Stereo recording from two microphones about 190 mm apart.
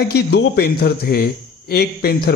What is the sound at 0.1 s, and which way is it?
A man's voice, 60° left (ahead or behind).